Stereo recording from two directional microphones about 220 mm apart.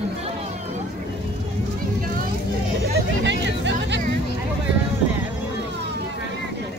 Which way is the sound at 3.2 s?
55° right (ahead or behind).